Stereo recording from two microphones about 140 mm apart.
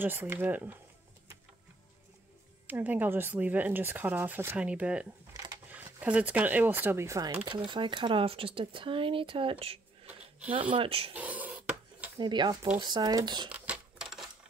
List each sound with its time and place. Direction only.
0.0 s speech: 15° right (ahead or behind)
2.6 s speech: 10° right (ahead or behind)
7.4 s speech: 35° right (ahead or behind)
11.1 s a sound: 10° right (ahead or behind)
12.2 s speech: 30° right (ahead or behind)
13.5 s a sound: 5° right (ahead or behind)